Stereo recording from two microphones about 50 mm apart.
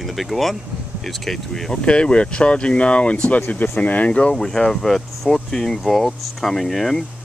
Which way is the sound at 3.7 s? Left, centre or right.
Left.